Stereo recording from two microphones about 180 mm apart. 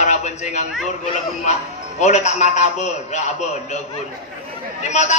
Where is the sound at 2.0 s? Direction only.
40° left (ahead or behind).